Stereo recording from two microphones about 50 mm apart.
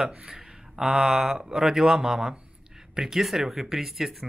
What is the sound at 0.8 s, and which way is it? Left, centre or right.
Speech, centre.